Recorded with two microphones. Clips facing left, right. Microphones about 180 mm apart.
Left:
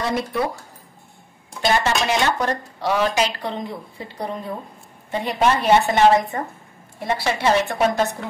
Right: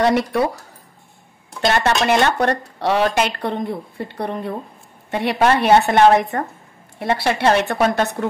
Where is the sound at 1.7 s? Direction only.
60° right (ahead or behind).